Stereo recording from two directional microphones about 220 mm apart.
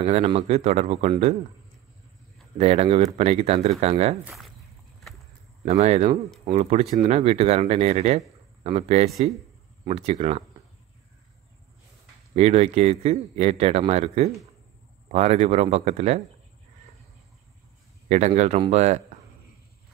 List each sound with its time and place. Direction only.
0.0 s speech: 30° right (ahead or behind)
2.5 s speech: 30° right (ahead or behind)
4.2 s speech: centre (ahead or behind)
5.7 s speech: 30° right (ahead or behind)
12.4 s speech: 30° right (ahead or behind)
18.0 s speech: 30° right (ahead or behind)